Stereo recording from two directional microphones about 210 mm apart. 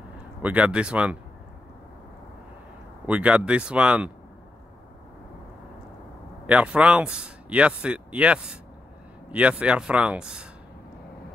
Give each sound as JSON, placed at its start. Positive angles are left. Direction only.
{"t": 0.4, "sound": "speech", "side_deg": -5}
{"t": 3.1, "sound": "speech", "side_deg": -5}
{"t": 6.4, "sound": "speech", "side_deg": -5}